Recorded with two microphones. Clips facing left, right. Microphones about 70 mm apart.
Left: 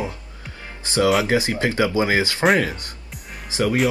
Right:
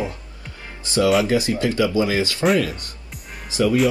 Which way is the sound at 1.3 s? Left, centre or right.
Left.